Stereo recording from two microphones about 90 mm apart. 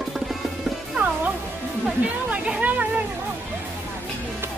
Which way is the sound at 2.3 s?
15° right (ahead or behind).